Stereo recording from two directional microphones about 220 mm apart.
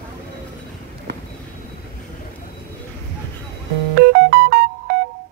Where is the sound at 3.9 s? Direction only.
45° right (ahead or behind).